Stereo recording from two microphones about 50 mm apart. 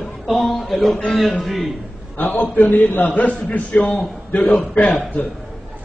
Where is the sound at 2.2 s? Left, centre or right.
Left.